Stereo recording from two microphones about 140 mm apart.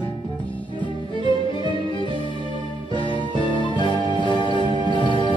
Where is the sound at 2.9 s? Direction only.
35° left (ahead or behind).